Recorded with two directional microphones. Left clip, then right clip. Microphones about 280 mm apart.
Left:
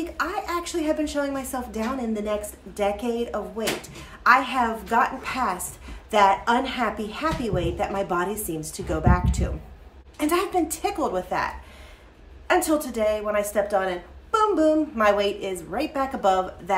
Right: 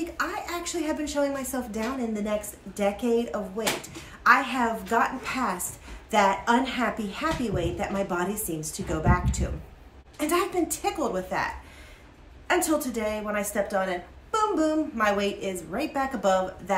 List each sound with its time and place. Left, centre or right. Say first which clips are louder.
0.2 s a woman's voice: left 4 dB; centre
12.4 s a woman's voice: left 3 dB; centre